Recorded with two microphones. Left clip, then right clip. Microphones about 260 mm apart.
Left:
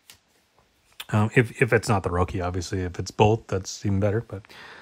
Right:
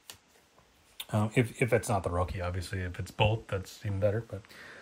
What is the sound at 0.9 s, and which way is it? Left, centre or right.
Speech, left.